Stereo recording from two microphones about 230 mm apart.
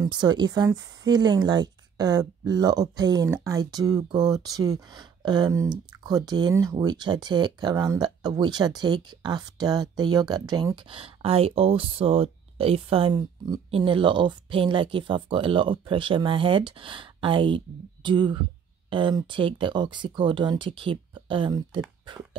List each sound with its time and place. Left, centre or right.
0.0 s speech: centre